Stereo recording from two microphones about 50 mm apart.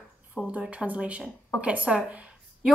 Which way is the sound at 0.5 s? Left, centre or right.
Right.